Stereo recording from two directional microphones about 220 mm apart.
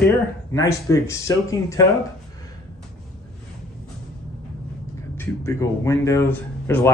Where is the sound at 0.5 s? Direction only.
15° left (ahead or behind).